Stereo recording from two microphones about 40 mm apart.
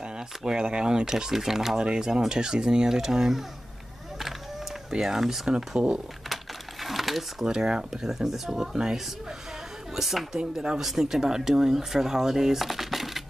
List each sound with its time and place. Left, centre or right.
0.4 s speech: centre
1.8 s speech: right
4.9 s speech: centre
5.8 s speech: right
6.2 s sewing machine: centre
7.4 s speech: centre
9.9 s speech: centre